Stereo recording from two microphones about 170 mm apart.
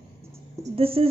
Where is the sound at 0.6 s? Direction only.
35° right (ahead or behind).